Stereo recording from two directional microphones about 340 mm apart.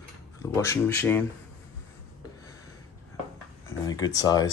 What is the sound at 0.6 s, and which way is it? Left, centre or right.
Speech, centre.